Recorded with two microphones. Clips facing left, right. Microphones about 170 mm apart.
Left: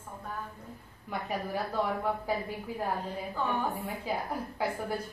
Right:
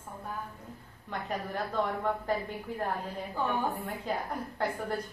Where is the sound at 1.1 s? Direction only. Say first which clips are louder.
Left 1 dB; 5° left (ahead or behind).